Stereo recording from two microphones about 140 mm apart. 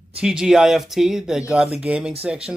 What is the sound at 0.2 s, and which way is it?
Speech, 5° right (ahead or behind).